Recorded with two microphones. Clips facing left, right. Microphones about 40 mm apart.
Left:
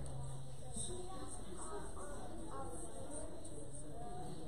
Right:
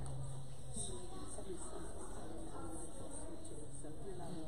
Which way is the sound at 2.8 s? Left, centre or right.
Left.